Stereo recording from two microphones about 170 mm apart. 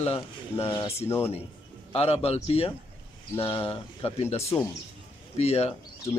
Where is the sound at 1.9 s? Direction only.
35° left (ahead or behind).